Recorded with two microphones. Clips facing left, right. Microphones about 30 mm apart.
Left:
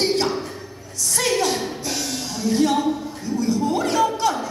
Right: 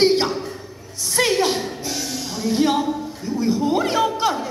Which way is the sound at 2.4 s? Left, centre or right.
Right.